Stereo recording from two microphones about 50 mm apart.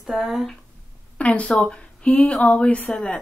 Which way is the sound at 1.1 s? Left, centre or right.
Left.